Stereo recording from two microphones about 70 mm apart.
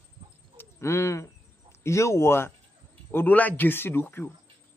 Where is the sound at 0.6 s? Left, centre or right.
Left.